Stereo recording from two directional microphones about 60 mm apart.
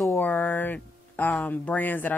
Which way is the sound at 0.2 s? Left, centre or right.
Left.